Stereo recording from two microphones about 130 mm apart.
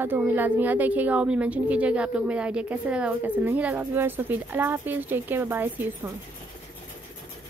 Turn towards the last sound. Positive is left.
turn(degrees=-15)  # may be behind; listen again after turning